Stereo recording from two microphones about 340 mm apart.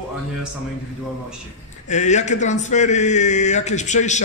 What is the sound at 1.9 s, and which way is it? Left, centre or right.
A man's voice, left.